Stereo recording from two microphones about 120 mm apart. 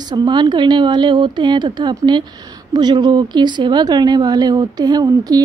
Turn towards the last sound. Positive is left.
turn(degrees=-30)  # may be behind; listen again after turning